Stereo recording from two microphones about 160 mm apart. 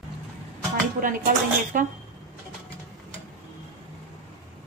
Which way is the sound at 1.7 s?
55° right (ahead or behind).